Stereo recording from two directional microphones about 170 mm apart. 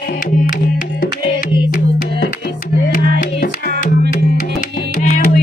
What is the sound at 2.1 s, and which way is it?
Music, 90° left.